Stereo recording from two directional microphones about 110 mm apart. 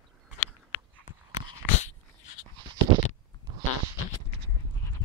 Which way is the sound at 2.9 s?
50° right (ahead or behind).